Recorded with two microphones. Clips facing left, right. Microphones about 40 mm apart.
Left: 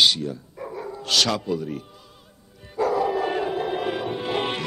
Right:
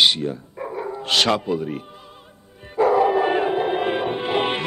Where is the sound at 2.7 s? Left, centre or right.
Right.